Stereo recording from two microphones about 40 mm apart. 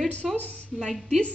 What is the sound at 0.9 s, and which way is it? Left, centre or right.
Speech, centre.